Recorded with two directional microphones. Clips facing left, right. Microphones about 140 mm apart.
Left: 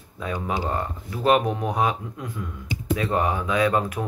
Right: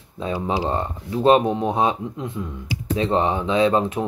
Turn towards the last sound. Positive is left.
turn(degrees=-25)  # may be behind; listen again after turning